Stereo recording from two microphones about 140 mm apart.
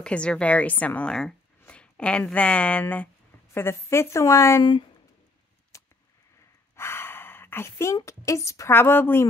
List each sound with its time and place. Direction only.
0.0 s a woman's voice: 5° left (ahead or behind)
5.7 s a sound: 20° left (ahead or behind)
6.8 s a woman's voice: 15° left (ahead or behind)